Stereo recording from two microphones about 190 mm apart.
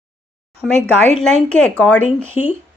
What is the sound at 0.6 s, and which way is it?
Speech, centre (ahead or behind).